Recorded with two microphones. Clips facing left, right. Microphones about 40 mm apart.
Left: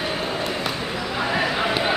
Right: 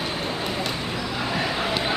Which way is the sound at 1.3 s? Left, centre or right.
Centre.